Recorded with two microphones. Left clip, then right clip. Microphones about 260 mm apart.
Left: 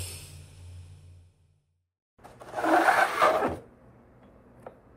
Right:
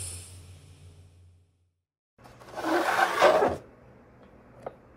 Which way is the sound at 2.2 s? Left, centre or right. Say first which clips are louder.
Left 5 dB; left.